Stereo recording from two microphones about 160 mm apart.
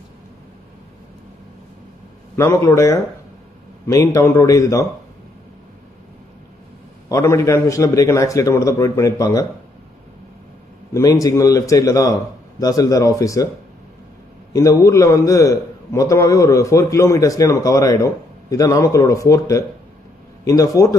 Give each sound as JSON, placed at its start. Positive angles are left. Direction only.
{"t": 2.3, "sound": "a man's voice", "side_deg": 15}
{"t": 7.1, "sound": "a man's voice", "side_deg": 20}
{"t": 10.9, "sound": "a man's voice", "side_deg": 20}
{"t": 14.5, "sound": "a man's voice", "side_deg": 20}